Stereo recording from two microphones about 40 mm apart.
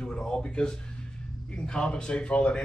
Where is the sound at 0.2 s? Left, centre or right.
Left.